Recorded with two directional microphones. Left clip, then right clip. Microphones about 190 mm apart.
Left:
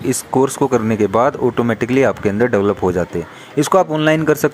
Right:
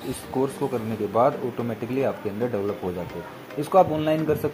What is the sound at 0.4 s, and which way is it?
Speech, 45° left (ahead or behind).